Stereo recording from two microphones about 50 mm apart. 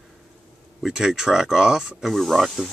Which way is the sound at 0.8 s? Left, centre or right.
Centre.